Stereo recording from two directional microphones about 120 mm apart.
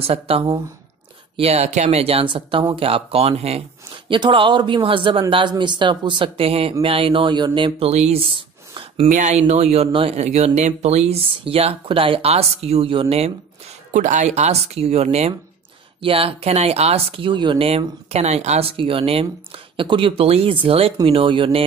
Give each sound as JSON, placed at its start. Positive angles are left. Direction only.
{"t": 0.0, "sound": "speech", "side_deg": -55}
{"t": 4.1, "sound": "speech", "side_deg": -45}
{"t": 7.9, "sound": "a sound", "side_deg": -60}
{"t": 9.1, "sound": "speech", "side_deg": -75}
{"t": 13.9, "sound": "speech", "side_deg": -90}
{"t": 16.0, "sound": "speech", "side_deg": -50}
{"t": 17.6, "sound": "speech", "side_deg": -60}